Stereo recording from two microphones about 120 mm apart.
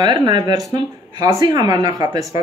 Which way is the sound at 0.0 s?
35° right (ahead or behind).